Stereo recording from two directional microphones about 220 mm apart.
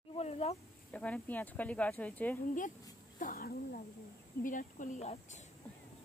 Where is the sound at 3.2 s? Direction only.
40° left (ahead or behind).